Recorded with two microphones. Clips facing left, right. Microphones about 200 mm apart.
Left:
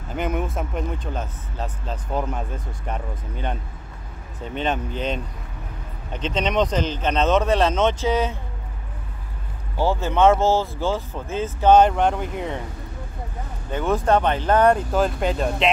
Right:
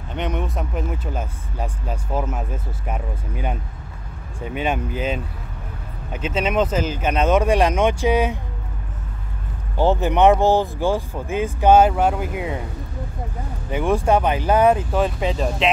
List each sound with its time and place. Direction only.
0.1 s speech: 5° left (ahead or behind); by 8.4 s 15° right (ahead or behind)
9.8 s speech: 15° right (ahead or behind)
13.7 s speech: 10° right (ahead or behind)